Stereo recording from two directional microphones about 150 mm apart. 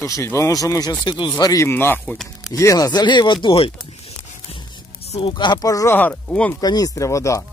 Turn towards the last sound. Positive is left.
turn(degrees=20)  # may be behind; listen again after turning